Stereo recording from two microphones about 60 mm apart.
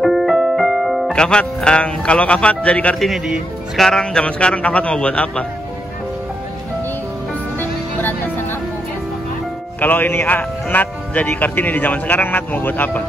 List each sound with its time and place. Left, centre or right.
0.0 s music: centre
1.1 s speech: centre
3.7 s speech: centre
7.5 s music: left
9.8 s speech: left